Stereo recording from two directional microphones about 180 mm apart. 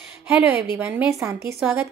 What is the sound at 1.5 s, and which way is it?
Speech, centre (ahead or behind).